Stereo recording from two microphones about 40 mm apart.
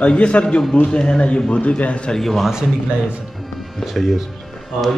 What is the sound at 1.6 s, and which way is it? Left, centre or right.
Speech, left.